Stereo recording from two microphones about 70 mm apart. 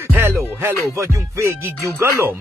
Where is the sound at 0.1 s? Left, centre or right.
Right.